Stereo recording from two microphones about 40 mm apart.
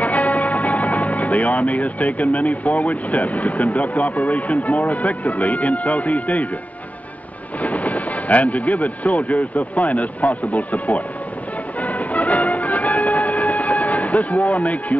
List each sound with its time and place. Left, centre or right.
0.0 s speech: left
7.6 s speech: left
11.8 s train: left